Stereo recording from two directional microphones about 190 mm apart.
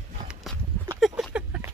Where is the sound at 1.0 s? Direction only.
5° right (ahead or behind).